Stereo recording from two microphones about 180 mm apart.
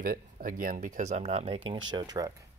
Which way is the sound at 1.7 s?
25° right (ahead or behind).